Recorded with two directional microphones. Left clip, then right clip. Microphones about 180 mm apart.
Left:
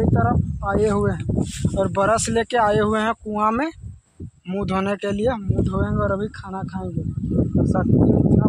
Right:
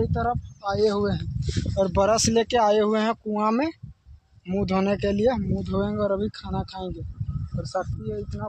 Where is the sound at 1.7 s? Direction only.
15° left (ahead or behind).